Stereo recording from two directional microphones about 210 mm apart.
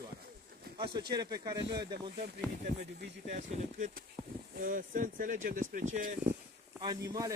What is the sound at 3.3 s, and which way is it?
Speech, 35° right (ahead or behind).